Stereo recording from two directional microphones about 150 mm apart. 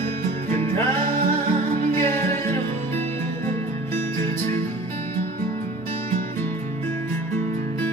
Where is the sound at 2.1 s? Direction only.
15° left (ahead or behind).